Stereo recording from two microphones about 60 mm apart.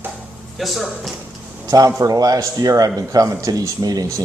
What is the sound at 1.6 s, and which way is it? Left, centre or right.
Speech, right.